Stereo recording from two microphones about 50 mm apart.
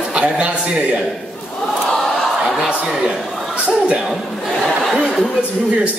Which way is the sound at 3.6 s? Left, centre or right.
Right.